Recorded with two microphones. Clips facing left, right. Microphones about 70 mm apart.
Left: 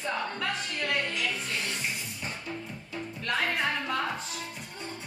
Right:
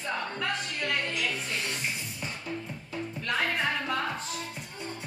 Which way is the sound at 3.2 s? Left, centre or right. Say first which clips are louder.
Even; centre.